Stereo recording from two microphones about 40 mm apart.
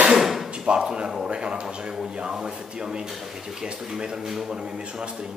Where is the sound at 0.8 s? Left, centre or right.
Centre.